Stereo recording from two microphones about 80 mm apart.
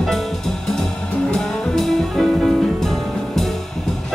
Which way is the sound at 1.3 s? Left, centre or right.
Centre.